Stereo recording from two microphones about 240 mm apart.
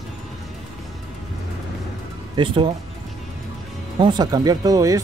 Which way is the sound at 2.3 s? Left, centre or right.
Right.